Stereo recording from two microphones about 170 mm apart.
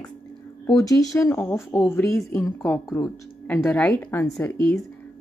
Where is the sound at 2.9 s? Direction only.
5° left (ahead or behind).